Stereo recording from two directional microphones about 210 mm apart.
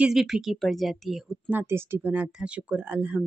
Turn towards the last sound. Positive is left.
turn(degrees=-5)  # may be behind; listen again after turning